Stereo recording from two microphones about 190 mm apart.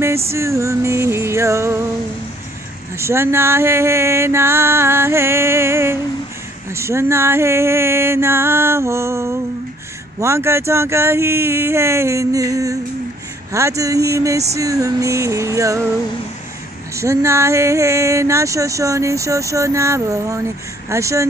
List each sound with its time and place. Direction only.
0.3 s music: 15° right (ahead or behind)
3.0 s speech: 15° right (ahead or behind)
16.9 s speech: 15° right (ahead or behind)